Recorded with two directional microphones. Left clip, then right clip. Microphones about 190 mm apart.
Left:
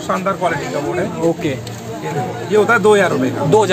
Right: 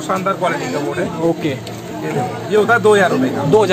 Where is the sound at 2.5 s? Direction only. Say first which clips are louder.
Even; 20° left (ahead or behind).